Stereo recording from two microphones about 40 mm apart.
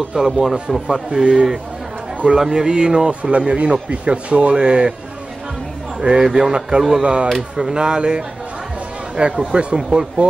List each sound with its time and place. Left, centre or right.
0.1 s speech: centre
3.1 s speech: right
5.9 s speech: centre
7.5 s speech: centre
7.8 s speech: right